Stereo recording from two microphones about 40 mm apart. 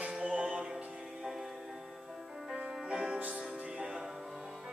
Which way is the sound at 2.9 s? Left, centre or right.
Centre.